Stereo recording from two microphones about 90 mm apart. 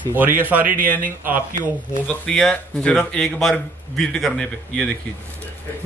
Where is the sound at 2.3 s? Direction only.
10° left (ahead or behind).